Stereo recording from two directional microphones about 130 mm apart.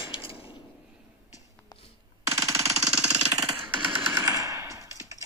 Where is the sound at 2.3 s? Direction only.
25° right (ahead or behind).